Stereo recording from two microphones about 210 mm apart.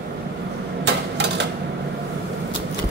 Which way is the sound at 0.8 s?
55° right (ahead or behind).